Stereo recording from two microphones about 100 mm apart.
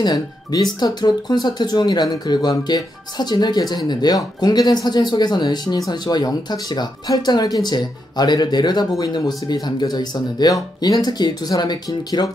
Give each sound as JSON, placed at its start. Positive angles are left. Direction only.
{"t": 0.0, "sound": "speech", "side_deg": 45}